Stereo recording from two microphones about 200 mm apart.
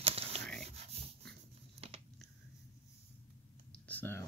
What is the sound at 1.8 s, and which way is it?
Biting, 30° right (ahead or behind).